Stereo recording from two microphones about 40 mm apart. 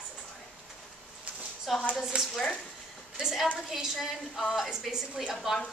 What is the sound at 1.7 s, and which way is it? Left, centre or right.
Speech, centre.